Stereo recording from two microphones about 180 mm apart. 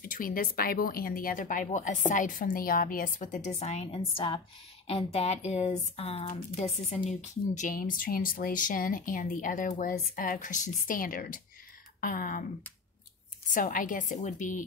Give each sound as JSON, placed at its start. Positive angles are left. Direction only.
{"t": 0.0, "sound": "speech", "side_deg": 50}
{"t": 13.5, "sound": "speech", "side_deg": 50}